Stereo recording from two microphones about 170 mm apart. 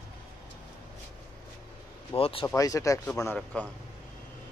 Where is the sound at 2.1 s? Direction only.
30° left (ahead or behind).